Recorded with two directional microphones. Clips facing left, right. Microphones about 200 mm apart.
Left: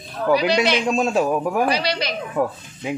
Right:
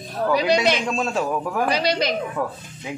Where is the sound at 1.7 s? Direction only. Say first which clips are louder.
Right 1 dB; 45° right (ahead or behind).